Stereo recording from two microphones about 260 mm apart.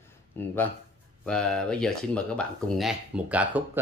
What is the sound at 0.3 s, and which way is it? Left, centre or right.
Speech, centre.